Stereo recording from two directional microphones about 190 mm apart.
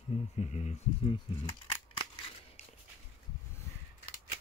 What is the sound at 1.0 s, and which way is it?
Speech, 25° left (ahead or behind).